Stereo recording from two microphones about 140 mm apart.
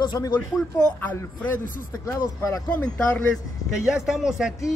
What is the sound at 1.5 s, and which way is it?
Speech, 70° left (ahead or behind).